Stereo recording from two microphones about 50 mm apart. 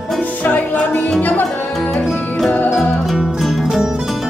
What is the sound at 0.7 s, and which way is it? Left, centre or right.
Music, centre.